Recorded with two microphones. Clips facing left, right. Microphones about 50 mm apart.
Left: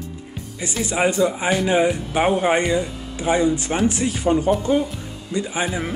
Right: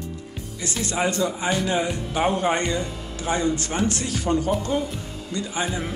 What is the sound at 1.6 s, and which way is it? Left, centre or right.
Speech, left.